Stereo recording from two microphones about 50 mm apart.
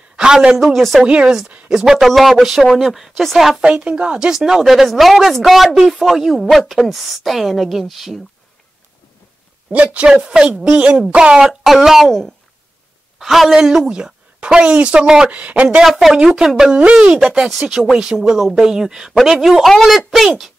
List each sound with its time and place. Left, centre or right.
0.1 s a sound: centre
0.7 s speech: centre
1.0 s speech: right
1.7 s a woman's voice: centre
3.6 s speech: right
4.4 s speech: centre
9.7 s a woman's voice: centre
11.6 s speech: centre
13.2 s a woman's voice: centre
15.3 s speech: right
15.8 s a woman's voice: centre
16.7 s a woman's voice: centre